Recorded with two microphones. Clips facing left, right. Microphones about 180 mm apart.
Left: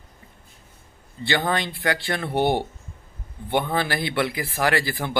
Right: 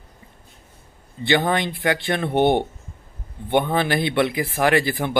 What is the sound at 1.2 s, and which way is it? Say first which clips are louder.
Speech: right 4 dB; 20° right (ahead or behind).